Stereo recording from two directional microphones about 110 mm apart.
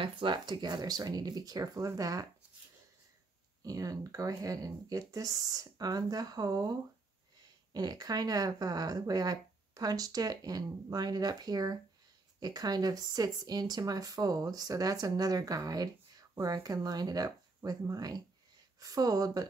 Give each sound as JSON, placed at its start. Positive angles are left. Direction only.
{"t": 0.0, "sound": "speech", "side_deg": -45}
{"t": 3.6, "sound": "speech", "side_deg": -30}